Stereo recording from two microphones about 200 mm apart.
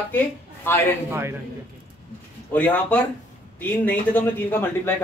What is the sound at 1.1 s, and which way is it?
Speech, 10° right (ahead or behind).